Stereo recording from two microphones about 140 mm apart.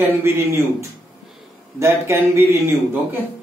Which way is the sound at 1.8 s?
20° right (ahead or behind).